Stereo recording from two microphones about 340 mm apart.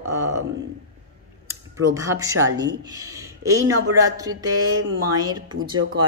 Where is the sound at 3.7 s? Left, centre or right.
Right.